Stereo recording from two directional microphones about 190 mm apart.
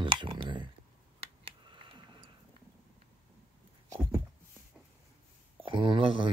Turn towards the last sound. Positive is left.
turn(degrees=-25)  # may be behind; listen again after turning